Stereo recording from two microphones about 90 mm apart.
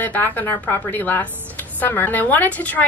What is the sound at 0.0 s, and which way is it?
A woman's voice, 20° left (ahead or behind).